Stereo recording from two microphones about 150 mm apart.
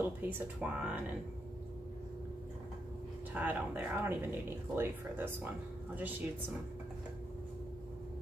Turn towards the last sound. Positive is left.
turn(degrees=-10)  # may be behind; listen again after turning